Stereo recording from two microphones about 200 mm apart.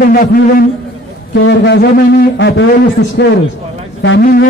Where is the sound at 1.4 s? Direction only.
60° left (ahead or behind).